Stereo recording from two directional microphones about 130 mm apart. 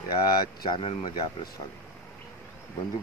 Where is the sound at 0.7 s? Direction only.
40° left (ahead or behind).